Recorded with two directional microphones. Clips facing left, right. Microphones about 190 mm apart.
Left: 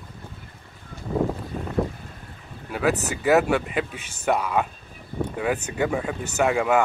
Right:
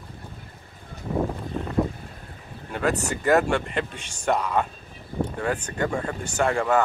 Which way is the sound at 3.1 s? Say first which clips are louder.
Left 1 dB; 5° left (ahead or behind).